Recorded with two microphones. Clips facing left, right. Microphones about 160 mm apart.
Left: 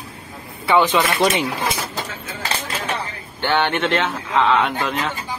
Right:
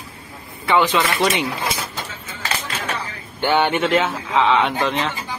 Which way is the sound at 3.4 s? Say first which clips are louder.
Right 2 dB; 10° right (ahead or behind).